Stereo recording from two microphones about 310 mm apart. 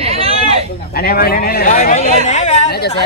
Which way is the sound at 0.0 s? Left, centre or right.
Centre.